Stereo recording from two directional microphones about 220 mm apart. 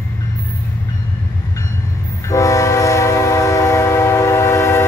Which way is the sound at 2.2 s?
15° left (ahead or behind).